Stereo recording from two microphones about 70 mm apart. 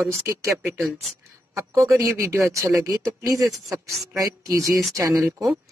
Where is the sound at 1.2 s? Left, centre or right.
Right.